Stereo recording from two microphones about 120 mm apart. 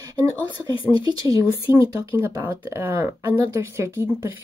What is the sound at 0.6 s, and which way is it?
Speech, 30° right (ahead or behind).